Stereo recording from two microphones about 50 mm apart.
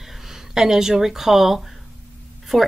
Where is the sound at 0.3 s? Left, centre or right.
Centre.